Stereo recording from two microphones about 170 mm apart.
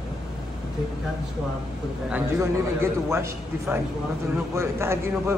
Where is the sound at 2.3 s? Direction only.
15° right (ahead or behind).